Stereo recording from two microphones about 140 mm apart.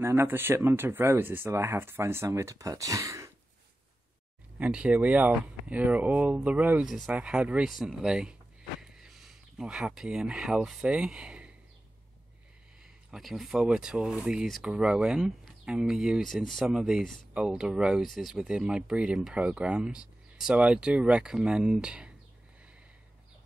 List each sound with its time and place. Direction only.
0.0 s speech: 15° right (ahead or behind)
4.6 s speech: 5° right (ahead or behind)
12.8 s speech: 5° right (ahead or behind)